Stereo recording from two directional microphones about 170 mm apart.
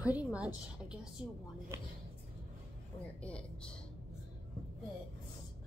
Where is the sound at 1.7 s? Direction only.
15° right (ahead or behind).